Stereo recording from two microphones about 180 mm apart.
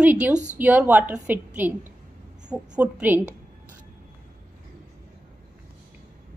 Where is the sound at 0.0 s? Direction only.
5° right (ahead or behind).